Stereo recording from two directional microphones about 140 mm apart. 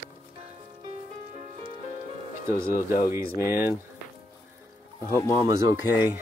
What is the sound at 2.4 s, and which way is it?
Speech, 20° right (ahead or behind).